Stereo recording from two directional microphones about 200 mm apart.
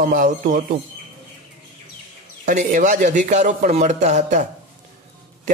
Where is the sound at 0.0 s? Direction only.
40° right (ahead or behind).